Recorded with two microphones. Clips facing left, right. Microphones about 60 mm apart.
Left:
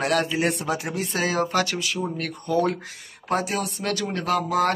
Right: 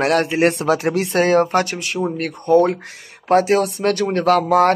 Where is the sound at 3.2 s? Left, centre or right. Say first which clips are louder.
Right 10 dB; right.